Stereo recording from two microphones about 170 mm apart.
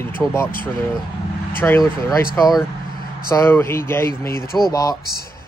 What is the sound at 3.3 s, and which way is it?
Speech, 15° left (ahead or behind).